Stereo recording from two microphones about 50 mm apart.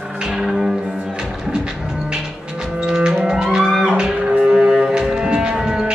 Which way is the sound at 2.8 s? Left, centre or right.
Centre.